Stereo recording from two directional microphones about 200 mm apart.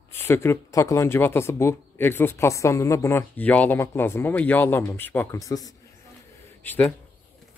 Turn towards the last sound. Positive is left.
turn(degrees=5)  # may be behind; listen again after turning